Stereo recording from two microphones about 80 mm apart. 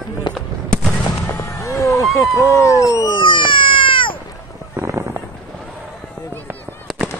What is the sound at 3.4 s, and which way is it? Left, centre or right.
Cat, left.